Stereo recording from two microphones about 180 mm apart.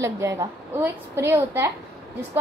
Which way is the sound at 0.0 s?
15° right (ahead or behind).